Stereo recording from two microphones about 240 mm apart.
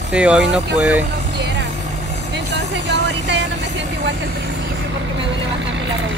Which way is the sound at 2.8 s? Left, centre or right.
Right.